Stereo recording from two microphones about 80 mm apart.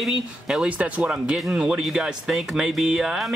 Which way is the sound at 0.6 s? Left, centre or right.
Centre.